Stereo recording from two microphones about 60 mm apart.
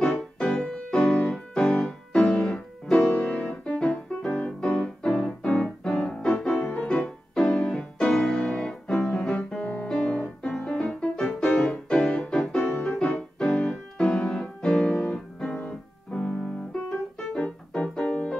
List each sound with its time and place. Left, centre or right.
0.4 s music: centre
3.1 s music: left
3.7 s keyboard: centre
7.3 s music: centre
15.6 s keyboard: left
17.3 s music: centre